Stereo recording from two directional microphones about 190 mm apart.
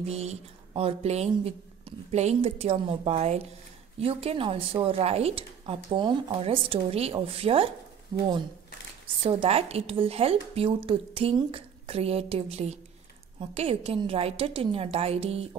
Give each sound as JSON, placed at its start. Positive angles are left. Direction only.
{"t": 0.0, "sound": "a woman's voice", "side_deg": -35}